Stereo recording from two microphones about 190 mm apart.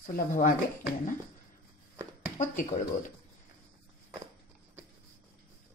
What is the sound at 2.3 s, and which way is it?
Speech, 40° left (ahead or behind).